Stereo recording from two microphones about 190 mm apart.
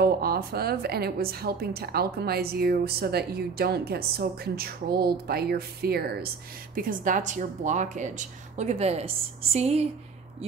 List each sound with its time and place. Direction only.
0.0 s a woman's voice: 55° right (ahead or behind); by 9.8 s 35° right (ahead or behind)